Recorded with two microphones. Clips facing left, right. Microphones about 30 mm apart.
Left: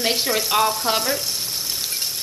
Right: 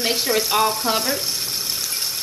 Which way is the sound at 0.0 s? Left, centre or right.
Centre.